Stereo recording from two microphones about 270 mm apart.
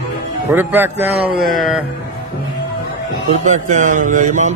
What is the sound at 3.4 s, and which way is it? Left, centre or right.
Speech, right.